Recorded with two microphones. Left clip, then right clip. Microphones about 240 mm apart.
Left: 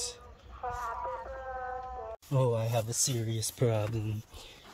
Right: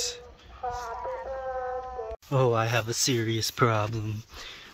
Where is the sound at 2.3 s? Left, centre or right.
Centre.